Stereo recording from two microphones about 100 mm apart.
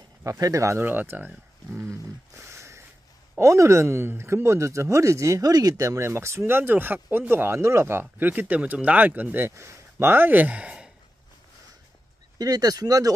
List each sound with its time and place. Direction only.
0.2 s speech: 35° right (ahead or behind); by 1.9 s 20° right (ahead or behind)
1.9 s a sound: 25° right (ahead or behind)
3.3 s speech: 30° right (ahead or behind); by 10.9 s 10° right (ahead or behind)
12.4 s speech: 40° right (ahead or behind)